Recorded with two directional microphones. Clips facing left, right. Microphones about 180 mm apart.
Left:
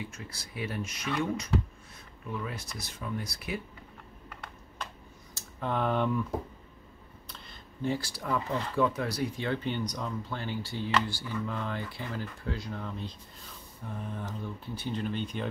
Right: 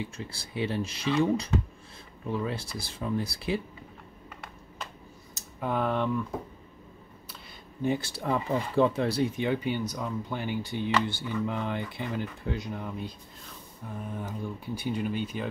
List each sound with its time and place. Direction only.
0.0 s speech: 30° right (ahead or behind)
5.6 s speech: 5° right (ahead or behind)
7.8 s speech: 20° right (ahead or behind)